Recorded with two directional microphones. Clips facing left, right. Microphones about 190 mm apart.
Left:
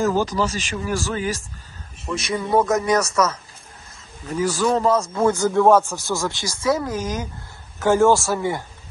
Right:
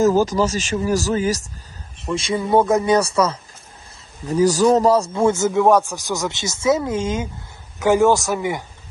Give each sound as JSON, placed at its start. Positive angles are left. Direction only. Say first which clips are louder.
{"t": 0.0, "sound": "speech", "louder": "right 4 dB", "side_deg": -45}
{"t": 2.1, "sound": "speech", "louder": "right 3 dB", "side_deg": -25}
{"t": 5.1, "sound": "a man's voice", "louder": "right 1 dB", "side_deg": -25}